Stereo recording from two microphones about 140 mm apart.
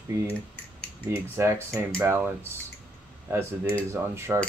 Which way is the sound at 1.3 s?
15° right (ahead or behind).